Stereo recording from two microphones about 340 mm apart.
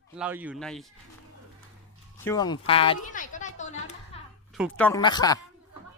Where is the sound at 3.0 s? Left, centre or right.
Left.